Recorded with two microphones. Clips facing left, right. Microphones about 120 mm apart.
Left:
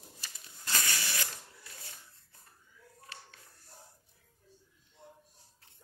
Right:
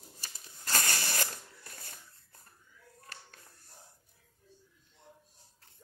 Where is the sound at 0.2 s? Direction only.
45° right (ahead or behind).